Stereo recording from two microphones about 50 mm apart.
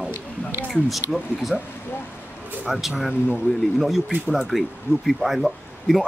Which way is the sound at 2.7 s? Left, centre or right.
Centre.